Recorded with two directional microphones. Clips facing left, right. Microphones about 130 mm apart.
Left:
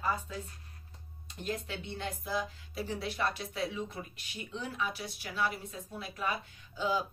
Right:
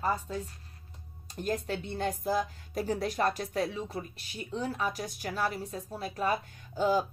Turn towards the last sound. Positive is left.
turn(degrees=-45)  # may be behind; listen again after turning